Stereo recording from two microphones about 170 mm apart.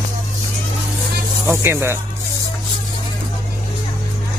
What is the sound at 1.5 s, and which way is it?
Speech, 15° right (ahead or behind).